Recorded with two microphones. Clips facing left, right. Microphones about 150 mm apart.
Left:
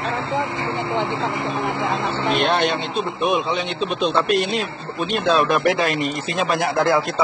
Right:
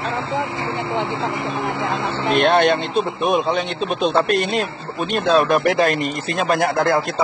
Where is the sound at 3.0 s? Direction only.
Centre (ahead or behind).